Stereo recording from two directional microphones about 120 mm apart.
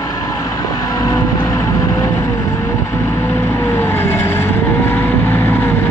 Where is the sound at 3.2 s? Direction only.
20° left (ahead or behind).